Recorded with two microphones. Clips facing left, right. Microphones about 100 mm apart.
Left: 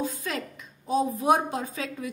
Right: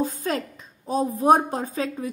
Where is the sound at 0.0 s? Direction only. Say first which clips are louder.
Right 6 dB; 40° right (ahead or behind).